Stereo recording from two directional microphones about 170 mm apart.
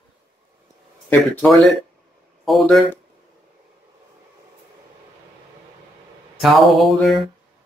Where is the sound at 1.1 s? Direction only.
5° left (ahead or behind).